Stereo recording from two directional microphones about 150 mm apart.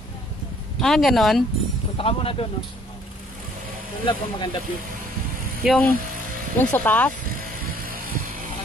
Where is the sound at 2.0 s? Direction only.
40° left (ahead or behind).